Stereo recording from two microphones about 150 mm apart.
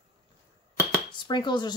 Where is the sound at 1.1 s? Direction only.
30° left (ahead or behind).